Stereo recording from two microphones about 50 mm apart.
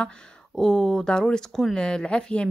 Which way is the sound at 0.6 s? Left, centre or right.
Centre.